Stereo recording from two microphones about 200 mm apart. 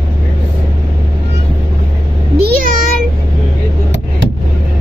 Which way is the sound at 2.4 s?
45° right (ahead or behind).